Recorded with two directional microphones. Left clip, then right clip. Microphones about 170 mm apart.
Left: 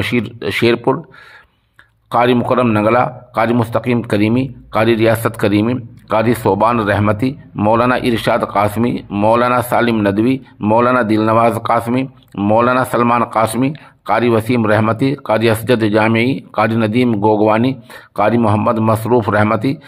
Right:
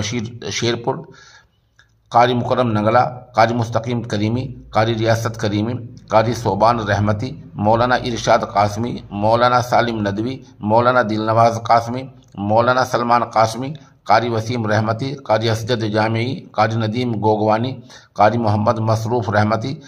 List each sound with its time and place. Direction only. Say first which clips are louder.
0.0 s a man's voice: left 7 dB; 20° left (ahead or behind)
2.0 s a man's voice: left 1 dB; 20° left (ahead or behind)